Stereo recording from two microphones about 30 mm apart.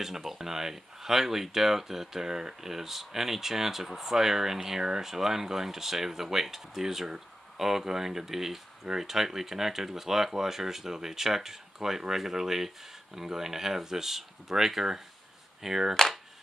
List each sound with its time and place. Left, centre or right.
0.0 s speech: centre
16.0 s speech: centre